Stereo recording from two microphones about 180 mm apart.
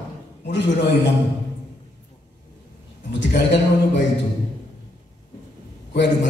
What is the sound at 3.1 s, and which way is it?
Speech, 75° left (ahead or behind).